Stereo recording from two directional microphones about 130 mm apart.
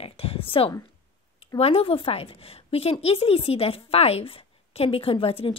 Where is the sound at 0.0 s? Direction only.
45° left (ahead or behind).